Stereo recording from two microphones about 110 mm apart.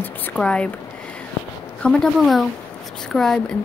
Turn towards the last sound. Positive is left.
turn(degrees=5)  # may be behind; listen again after turning